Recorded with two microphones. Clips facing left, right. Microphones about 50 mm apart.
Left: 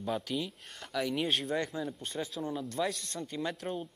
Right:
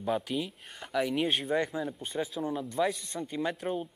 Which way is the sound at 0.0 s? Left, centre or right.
Centre.